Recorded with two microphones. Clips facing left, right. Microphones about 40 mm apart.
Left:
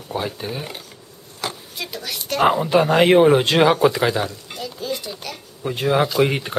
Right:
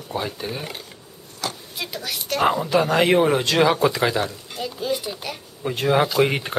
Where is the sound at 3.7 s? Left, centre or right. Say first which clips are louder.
Left 3 dB; centre.